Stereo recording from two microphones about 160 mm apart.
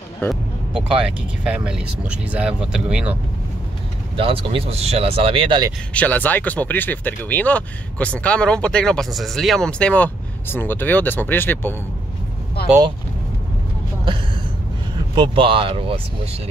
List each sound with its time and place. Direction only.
0.3 s speech: 5° right (ahead or behind)
4.2 s speech: 35° right (ahead or behind)
5.9 s speech: 10° left (ahead or behind)
12.6 s speech: 80° left
15.1 s speech: 30° right (ahead or behind)